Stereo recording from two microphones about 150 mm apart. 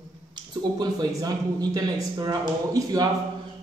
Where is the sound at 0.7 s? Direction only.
25° right (ahead or behind).